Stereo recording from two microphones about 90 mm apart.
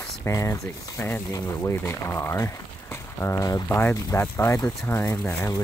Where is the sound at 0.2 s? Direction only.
30° left (ahead or behind).